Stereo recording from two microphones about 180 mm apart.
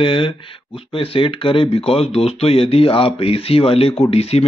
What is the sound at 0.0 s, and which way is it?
Speech, 30° left (ahead or behind).